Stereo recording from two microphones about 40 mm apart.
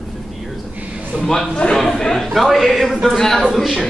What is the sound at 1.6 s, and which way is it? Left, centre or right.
Speech, centre.